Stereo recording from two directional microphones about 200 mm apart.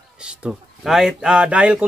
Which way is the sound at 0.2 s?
5° right (ahead or behind).